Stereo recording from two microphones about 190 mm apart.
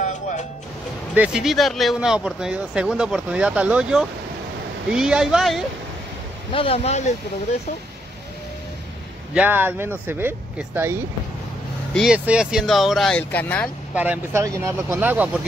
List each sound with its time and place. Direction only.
0.0 s music: 40° left (ahead or behind)
1.1 s speech: 5° right (ahead or behind)
6.5 s speech: 30° left (ahead or behind)
9.3 s speech: 10° right (ahead or behind); by 13.7 s 10° left (ahead or behind)
13.9 s speech: 10° right (ahead or behind)